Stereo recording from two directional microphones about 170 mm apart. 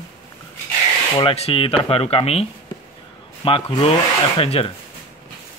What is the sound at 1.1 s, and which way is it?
Speech, 35° left (ahead or behind).